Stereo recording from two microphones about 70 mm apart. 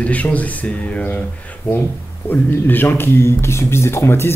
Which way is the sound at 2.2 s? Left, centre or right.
Left.